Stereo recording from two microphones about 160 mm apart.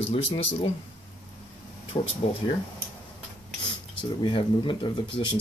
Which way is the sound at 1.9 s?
35° left (ahead or behind).